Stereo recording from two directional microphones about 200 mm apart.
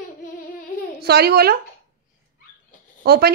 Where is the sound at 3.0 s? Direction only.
55° right (ahead or behind).